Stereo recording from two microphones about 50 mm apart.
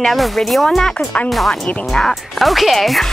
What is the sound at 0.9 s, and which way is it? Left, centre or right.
Speech, left.